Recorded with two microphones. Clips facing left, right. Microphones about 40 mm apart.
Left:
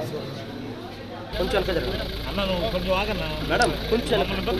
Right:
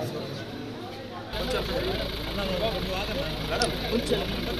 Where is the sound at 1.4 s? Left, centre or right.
Left.